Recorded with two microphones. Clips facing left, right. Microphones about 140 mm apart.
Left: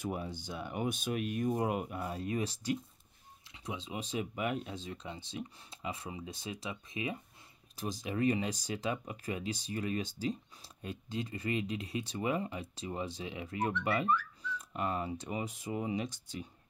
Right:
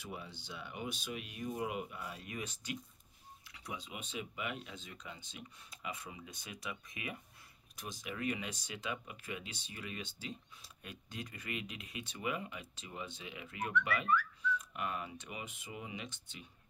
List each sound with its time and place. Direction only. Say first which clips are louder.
0.0 s speech: left 9 dB; 45° left (ahead or behind)